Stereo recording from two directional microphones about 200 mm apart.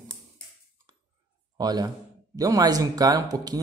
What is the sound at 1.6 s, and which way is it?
Speech, 20° right (ahead or behind).